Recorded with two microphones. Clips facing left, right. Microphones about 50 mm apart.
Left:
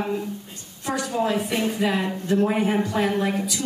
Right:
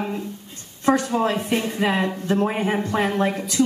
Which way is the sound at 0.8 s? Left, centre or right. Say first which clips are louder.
Right 5 dB; right.